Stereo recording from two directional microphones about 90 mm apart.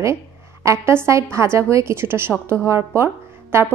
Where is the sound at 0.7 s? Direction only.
30° right (ahead or behind).